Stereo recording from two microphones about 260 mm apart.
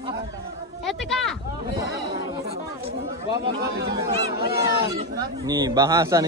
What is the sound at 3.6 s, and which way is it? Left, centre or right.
Speech, right.